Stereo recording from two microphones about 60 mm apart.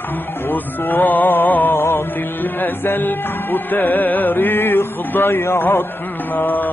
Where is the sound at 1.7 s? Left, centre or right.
Left.